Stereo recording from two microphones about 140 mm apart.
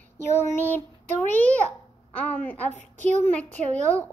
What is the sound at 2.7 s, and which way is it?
Speech, 55° right (ahead or behind).